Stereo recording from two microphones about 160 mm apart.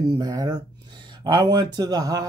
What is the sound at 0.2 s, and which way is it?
Speech, 25° right (ahead or behind).